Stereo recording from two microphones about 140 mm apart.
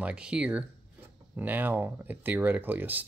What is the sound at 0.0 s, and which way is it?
Speech, 5° right (ahead or behind).